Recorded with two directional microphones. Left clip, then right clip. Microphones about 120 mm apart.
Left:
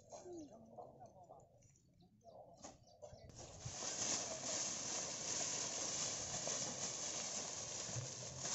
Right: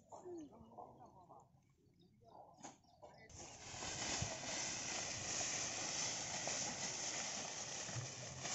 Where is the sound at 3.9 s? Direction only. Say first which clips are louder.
Left 1 dB; 40° left (ahead or behind).